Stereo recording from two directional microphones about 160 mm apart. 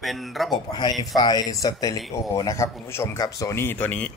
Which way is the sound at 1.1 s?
25° left (ahead or behind).